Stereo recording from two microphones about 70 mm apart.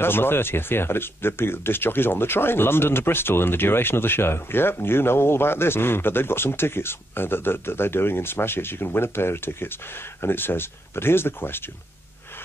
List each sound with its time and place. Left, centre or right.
0.0 s speech: left